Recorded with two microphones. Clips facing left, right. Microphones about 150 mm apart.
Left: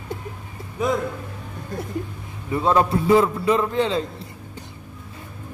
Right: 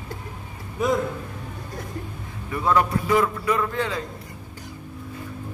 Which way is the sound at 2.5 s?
25° left (ahead or behind).